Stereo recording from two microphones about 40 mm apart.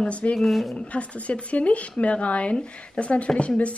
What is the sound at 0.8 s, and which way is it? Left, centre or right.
Speech, left.